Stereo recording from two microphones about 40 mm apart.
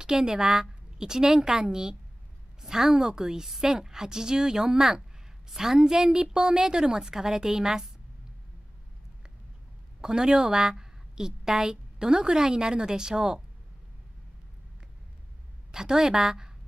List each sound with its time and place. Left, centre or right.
0.0 s a woman's voice: centre
10.0 s a woman's voice: centre
15.7 s a woman's voice: centre